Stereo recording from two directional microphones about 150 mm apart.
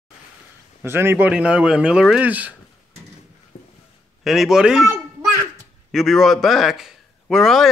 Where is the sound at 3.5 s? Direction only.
90° left.